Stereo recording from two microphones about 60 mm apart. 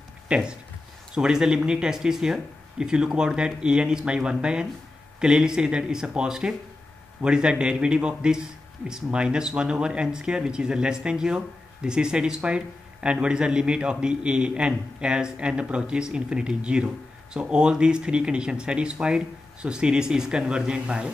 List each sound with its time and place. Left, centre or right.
0.3 s speech: centre